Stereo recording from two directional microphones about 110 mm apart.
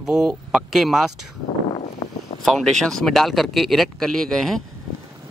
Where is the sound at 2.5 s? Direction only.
5° left (ahead or behind).